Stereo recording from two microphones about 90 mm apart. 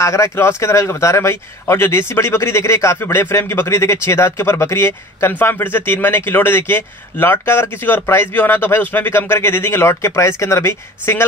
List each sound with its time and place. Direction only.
0.0 s speech: 35° left (ahead or behind)